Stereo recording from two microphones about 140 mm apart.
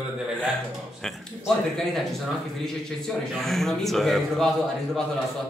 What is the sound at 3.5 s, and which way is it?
Speech, centre (ahead or behind).